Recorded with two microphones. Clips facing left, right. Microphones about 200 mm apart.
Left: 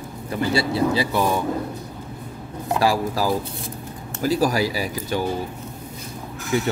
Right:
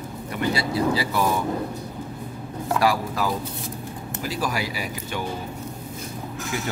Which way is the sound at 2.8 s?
30° left (ahead or behind).